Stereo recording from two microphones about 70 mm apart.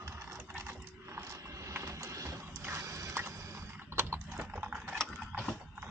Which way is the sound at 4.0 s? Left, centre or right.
Right.